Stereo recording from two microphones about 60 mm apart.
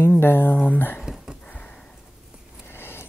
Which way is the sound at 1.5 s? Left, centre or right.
Left.